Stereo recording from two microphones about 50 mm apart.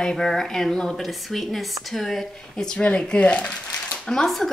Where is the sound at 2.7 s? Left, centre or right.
Left.